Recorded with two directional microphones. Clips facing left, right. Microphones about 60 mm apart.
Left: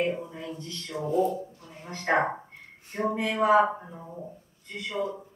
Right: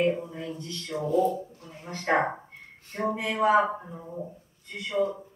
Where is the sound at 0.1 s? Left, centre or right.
Centre.